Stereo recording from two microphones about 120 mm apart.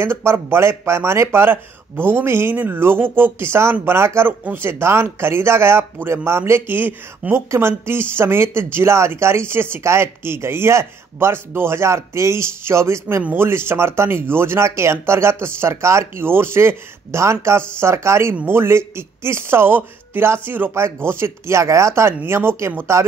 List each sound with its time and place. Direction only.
0.0 s speech: 20° right (ahead or behind)